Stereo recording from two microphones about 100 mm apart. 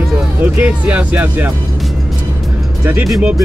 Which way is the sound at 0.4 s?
15° right (ahead or behind).